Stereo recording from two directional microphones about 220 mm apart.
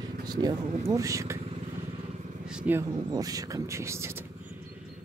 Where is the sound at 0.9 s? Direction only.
15° right (ahead or behind).